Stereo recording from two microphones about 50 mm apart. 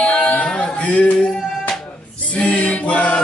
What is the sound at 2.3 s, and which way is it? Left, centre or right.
Choir, left.